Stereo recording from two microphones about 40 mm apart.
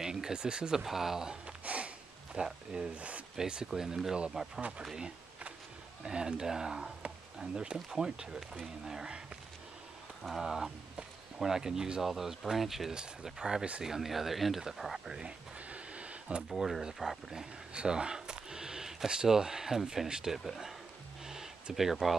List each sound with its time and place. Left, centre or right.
0.0 s speech: centre
1.6 s a sound: right
2.3 s speech: centre
2.9 s speech: right
3.3 s speech: centre
4.6 s speech: right
4.9 s a sound: right
6.0 s speech: centre
10.2 s speech: centre
15.7 s a sound: right
16.5 s speech: centre
17.7 s speech: centre
20.4 s speech: centre
21.7 s speech: centre